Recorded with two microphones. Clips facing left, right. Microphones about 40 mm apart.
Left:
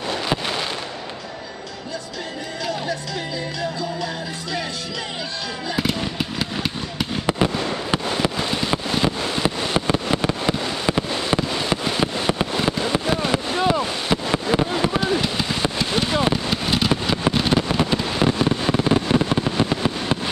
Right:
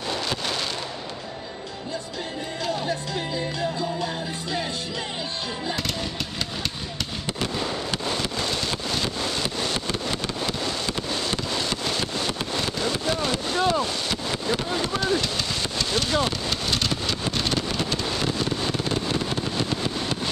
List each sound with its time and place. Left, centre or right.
0.3 s fireworks: centre
5.8 s fireworks: centre
16.9 s vehicle: centre
17.3 s fireworks: centre